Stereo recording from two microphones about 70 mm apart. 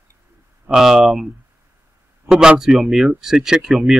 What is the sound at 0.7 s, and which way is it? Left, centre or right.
Speech, centre.